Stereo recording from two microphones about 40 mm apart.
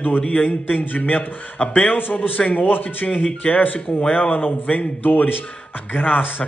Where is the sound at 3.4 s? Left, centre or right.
Left.